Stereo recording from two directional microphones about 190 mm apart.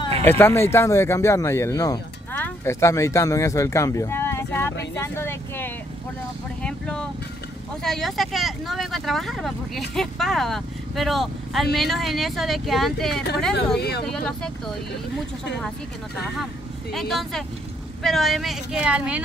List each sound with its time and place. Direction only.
0.2 s speech: 10° left (ahead or behind)
6.6 s vehicle: 5° left (ahead or behind)
7.8 s speech: centre (ahead or behind)
13.7 s speech: 60° left (ahead or behind)
14.0 s speech: 5° left (ahead or behind)
16.9 s speech: centre (ahead or behind)